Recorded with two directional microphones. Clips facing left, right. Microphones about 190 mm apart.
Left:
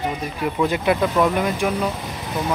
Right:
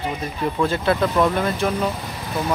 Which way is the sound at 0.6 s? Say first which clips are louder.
Left 1 dB; 15° left (ahead or behind).